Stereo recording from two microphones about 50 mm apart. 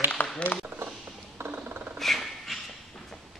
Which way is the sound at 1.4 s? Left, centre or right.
Right.